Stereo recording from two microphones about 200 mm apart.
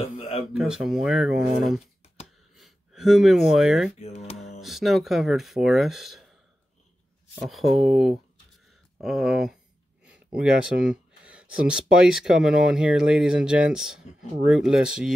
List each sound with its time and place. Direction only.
0.0 s a sound: 30° left (ahead or behind)
0.5 s speech: 5° right (ahead or behind)
4.0 s speech: 30° left (ahead or behind)
4.6 s speech: centre (ahead or behind)
7.4 s speech: centre (ahead or behind)